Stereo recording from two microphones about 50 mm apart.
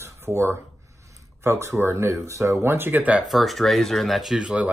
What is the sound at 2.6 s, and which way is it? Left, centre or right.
Speech, right.